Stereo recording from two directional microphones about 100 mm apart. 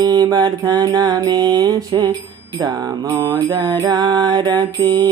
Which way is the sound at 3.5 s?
40° right (ahead or behind).